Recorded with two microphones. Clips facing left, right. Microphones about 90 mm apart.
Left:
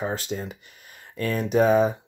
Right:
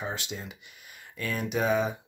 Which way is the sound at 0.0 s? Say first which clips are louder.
Left 7 dB; 40° left (ahead or behind).